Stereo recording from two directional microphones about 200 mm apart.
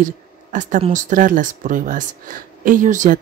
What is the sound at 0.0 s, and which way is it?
A woman's voice, 40° right (ahead or behind).